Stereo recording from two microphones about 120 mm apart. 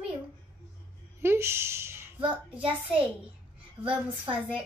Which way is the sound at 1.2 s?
20° right (ahead or behind).